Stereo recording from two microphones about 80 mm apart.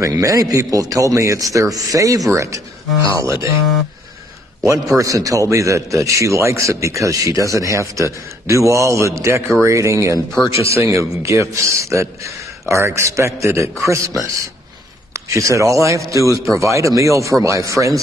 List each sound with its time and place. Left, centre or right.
0.0 s a man's voice: right
4.6 s a man's voice: right